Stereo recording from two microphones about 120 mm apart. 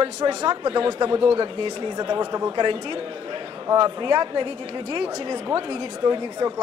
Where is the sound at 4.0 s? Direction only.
35° right (ahead or behind).